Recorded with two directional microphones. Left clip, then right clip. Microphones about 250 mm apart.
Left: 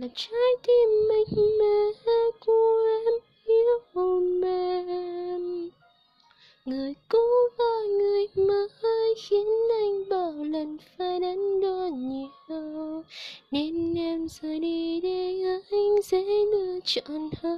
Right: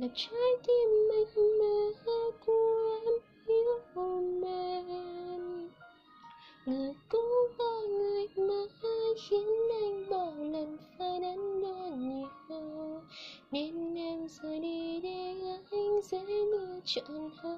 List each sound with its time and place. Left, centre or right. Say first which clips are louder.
0.0 s child singing: left 6 dB; left
6.6 s child singing: left 4 dB; left
12.1 s music: left 6 dB; left
16.1 s a sound: left 9 dB; left